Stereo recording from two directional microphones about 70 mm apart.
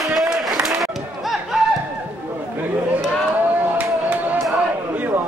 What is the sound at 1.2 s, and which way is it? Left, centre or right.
Music, centre.